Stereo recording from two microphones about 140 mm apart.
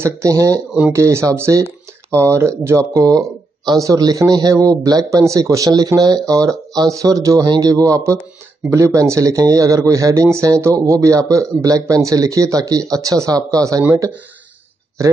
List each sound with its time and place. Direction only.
0.0 s a man's voice: 20° right (ahead or behind)